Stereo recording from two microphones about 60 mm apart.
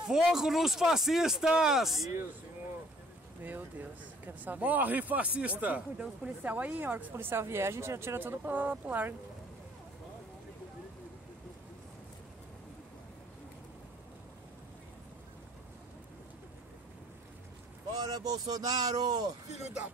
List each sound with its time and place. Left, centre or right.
0.0 s speech: centre
3.4 s speech: right
8.2 s speech: right
17.9 s speech: right